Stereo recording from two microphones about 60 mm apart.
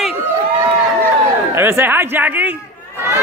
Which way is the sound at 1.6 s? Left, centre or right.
Right.